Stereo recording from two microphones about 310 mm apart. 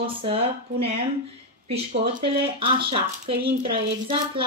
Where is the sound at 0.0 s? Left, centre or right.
Centre.